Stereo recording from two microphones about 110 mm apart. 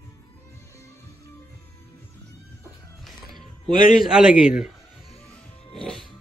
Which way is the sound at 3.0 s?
Centre (ahead or behind).